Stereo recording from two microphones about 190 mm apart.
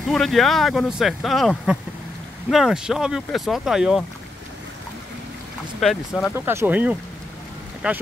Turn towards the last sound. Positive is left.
turn(degrees=-5)  # may be behind; listen again after turning